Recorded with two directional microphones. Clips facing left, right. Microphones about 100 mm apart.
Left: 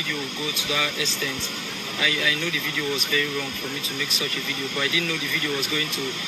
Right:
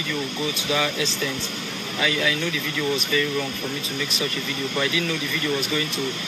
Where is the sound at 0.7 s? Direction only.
35° right (ahead or behind).